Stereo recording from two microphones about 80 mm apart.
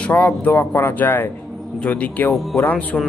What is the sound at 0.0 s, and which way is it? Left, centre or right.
A man's voice, centre.